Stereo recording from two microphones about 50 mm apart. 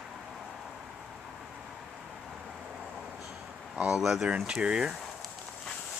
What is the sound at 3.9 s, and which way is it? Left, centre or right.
Speech, centre.